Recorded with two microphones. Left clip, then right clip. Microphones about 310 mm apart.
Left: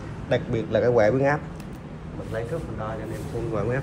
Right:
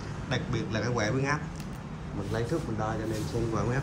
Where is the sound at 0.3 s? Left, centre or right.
Centre.